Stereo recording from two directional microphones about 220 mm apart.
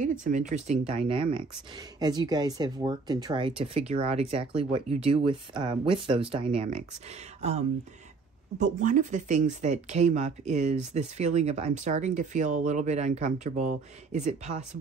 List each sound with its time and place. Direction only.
0.0 s speech: 35° right (ahead or behind)
8.5 s speech: 35° right (ahead or behind)